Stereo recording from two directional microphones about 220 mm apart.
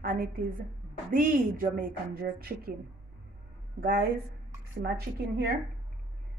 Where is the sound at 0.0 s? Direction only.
40° right (ahead or behind).